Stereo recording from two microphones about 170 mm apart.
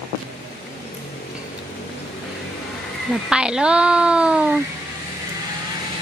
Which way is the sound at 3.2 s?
5° right (ahead or behind).